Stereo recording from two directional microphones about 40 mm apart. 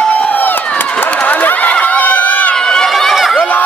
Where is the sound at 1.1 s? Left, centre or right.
Left.